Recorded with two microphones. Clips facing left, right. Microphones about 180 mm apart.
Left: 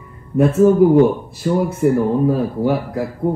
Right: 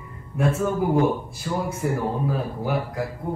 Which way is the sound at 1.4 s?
40° left (ahead or behind).